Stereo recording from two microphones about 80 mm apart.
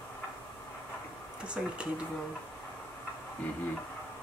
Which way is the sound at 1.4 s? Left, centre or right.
Centre.